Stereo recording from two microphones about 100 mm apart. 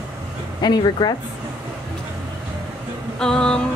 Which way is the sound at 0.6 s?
50° left (ahead or behind).